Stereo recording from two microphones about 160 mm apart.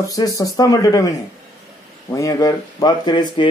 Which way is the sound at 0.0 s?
20° left (ahead or behind).